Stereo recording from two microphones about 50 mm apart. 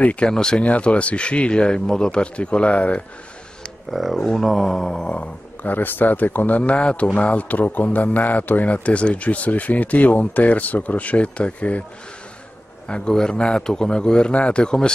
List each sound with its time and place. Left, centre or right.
0.0 s a man's voice: left
0.3 s a man's voice: centre
0.7 s a man's voice: left
3.9 s speech: centre
5.0 s a man's voice: left
12.8 s a man's voice: centre